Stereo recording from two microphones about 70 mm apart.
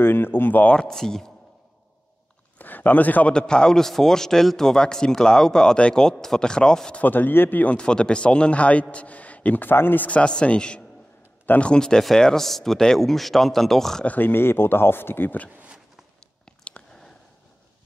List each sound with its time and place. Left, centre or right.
0.0 s speech: left
0.7 s speech: centre
2.6 s speech: left
3.3 s speech: centre
7.0 s a man's voice: left
7.7 s a man's voice: centre
14.0 s speech: left
15.5 s a sound: centre
16.6 s a sound: centre